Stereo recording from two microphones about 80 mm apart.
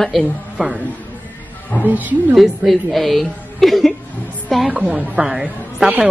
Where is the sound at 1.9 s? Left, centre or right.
Right.